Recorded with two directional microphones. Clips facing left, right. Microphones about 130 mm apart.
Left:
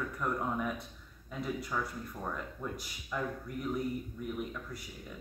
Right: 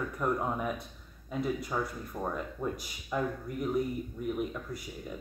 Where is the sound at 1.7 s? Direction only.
30° right (ahead or behind).